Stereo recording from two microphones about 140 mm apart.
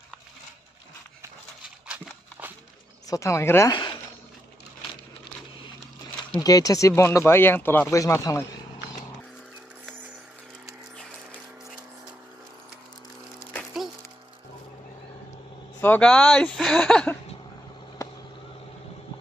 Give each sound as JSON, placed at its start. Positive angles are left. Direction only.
{"t": 1.9, "sound": "horse", "side_deg": -10}
{"t": 3.1, "sound": "speech", "side_deg": 20}
{"t": 6.4, "sound": "speech", "side_deg": 25}
{"t": 15.8, "sound": "speech", "side_deg": 10}